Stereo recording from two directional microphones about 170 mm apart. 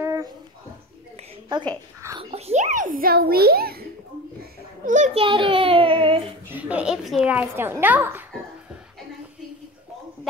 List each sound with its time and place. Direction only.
0.0 s a sound: 20° right (ahead or behind)
1.7 s speech: 20° right (ahead or behind)
2.3 s a child's voice: 40° right (ahead or behind); by 3.8 s 65° right (ahead or behind)
4.8 s a child's voice: 45° right (ahead or behind)
5.2 s child singing: 30° right (ahead or behind)
6.5 s a child's voice: 5° right (ahead or behind)